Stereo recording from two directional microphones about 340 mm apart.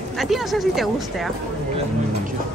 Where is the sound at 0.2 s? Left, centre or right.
Centre.